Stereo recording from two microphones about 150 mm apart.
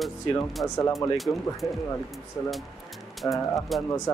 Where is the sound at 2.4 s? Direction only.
25° left (ahead or behind).